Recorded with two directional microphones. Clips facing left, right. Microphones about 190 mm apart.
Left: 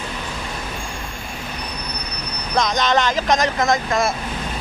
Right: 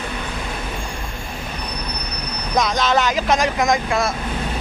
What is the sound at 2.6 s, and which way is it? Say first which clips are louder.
Speech: even; 5° right (ahead or behind).